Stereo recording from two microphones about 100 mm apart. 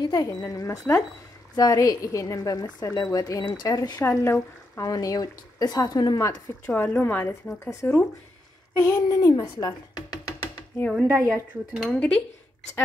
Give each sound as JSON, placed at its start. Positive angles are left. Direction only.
{"t": 0.0, "sound": "speech", "side_deg": 35}
{"t": 4.0, "sound": "a woman's voice", "side_deg": 25}
{"t": 4.8, "sound": "a woman's voice", "side_deg": 40}
{"t": 10.2, "sound": "music", "side_deg": 20}
{"t": 11.7, "sound": "speech", "side_deg": 10}